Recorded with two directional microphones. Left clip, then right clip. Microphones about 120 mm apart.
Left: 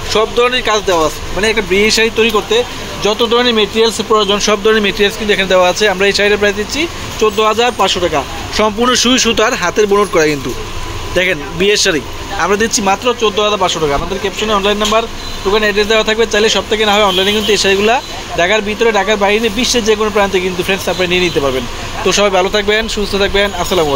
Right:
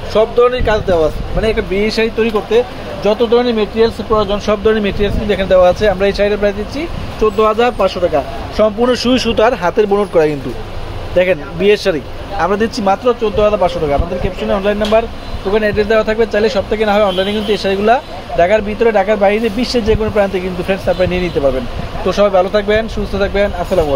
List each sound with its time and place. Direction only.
0.1 s speech: centre (ahead or behind)
3.3 s speech: 5° left (ahead or behind)
4.6 s speech: 10° right (ahead or behind); by 15.8 s 30° right (ahead or behind)
15.8 s speech: 20° right (ahead or behind)